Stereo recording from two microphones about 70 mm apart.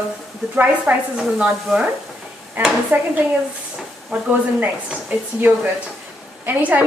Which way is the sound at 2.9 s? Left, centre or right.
Right.